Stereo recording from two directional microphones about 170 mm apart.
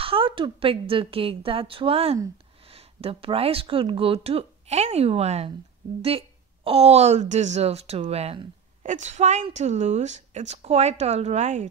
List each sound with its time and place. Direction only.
0.0 s speech: 30° right (ahead or behind)